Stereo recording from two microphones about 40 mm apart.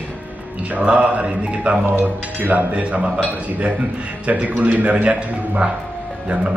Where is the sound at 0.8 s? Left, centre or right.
Right.